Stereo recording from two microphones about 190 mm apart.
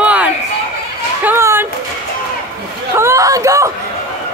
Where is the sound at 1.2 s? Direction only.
10° right (ahead or behind).